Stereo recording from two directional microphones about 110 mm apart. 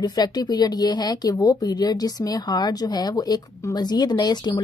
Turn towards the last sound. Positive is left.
turn(degrees=40)  # may be behind; listen again after turning